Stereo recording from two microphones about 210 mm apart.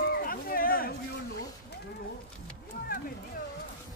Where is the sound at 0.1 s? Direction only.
45° left (ahead or behind).